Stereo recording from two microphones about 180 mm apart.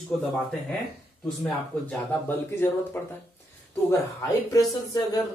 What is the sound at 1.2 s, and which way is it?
Speech, 5° left (ahead or behind).